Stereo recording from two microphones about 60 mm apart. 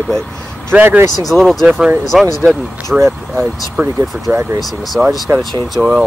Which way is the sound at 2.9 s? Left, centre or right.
Centre.